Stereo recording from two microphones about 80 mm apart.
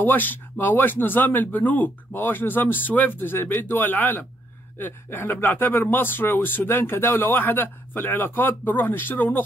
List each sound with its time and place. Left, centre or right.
0.0 s speech: left